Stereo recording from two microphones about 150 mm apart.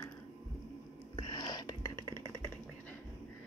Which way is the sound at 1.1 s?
30° left (ahead or behind).